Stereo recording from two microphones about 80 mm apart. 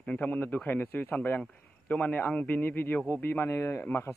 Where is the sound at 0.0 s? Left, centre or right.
Centre.